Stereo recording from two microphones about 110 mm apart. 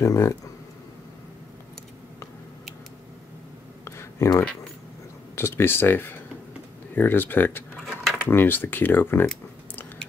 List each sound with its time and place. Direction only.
0.0 s speech: 25° left (ahead or behind)
3.8 s a sound: 25° left (ahead or behind)
5.3 s speech: 20° left (ahead or behind)
7.7 s cutlery: 5° left (ahead or behind)
8.3 s speech: 20° left (ahead or behind)